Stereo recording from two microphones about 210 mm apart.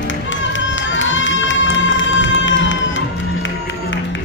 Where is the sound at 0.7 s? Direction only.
60° left (ahead or behind).